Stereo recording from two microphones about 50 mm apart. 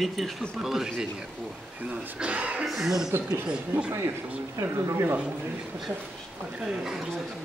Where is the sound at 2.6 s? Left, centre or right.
Centre.